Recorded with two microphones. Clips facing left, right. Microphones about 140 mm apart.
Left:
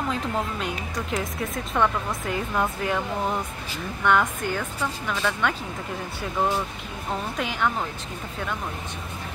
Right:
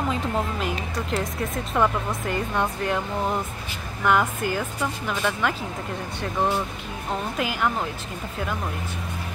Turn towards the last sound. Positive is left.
turn(degrees=-5)  # may be behind; listen again after turning